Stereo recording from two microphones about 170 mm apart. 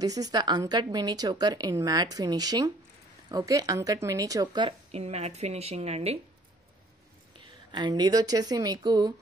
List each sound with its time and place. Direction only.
0.0 s a woman's voice: 20° right (ahead or behind)
4.6 s speech: 40° right (ahead or behind)
7.3 s speech: 25° right (ahead or behind)